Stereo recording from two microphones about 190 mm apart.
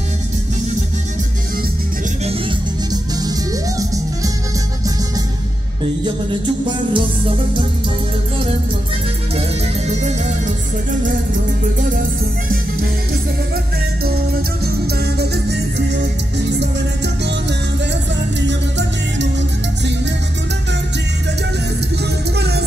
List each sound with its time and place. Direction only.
2.9 s music: 20° right (ahead or behind)
6.0 s music: 25° right (ahead or behind)
9.8 s music: 40° right (ahead or behind)
14.0 s music: 55° right (ahead or behind)
18.5 s music: 70° right (ahead or behind)